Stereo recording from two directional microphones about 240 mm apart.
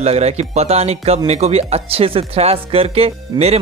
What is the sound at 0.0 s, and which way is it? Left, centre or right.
Speech, right.